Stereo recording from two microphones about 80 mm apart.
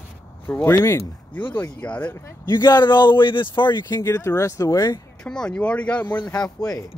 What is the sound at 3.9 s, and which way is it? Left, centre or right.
Speech, left.